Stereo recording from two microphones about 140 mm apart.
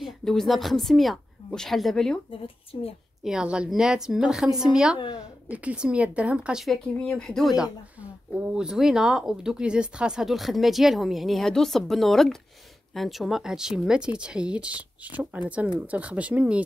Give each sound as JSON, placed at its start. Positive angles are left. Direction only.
{"t": 0.0, "sound": "speech", "side_deg": 5}
{"t": 2.4, "sound": "a woman's voice", "side_deg": 45}
{"t": 3.3, "sound": "speech", "side_deg": -5}